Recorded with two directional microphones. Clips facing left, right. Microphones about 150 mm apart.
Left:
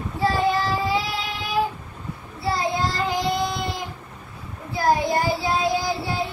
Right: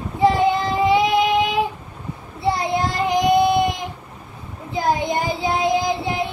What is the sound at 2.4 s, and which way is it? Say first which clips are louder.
Child singing: right 3 dB; 20° right (ahead or behind).